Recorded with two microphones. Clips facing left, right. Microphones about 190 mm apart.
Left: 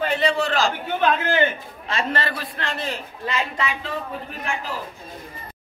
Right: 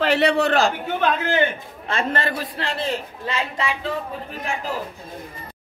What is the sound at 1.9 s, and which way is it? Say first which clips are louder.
Speech: right 2 dB; 50° right (ahead or behind).